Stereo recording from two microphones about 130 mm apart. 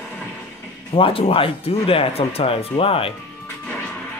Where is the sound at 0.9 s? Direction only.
45° left (ahead or behind).